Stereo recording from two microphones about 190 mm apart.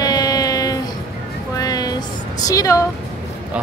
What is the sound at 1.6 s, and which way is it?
Music, 20° left (ahead or behind).